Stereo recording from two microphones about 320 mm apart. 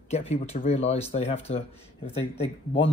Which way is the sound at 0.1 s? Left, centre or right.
Centre.